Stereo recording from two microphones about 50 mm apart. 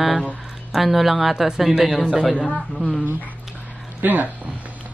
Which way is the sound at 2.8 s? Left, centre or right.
Centre.